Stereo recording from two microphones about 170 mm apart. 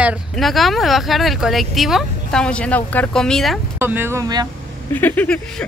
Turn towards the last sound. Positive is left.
turn(degrees=10)  # may be behind; listen again after turning